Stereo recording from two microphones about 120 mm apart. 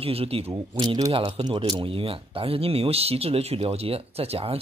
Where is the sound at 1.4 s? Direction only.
40° right (ahead or behind).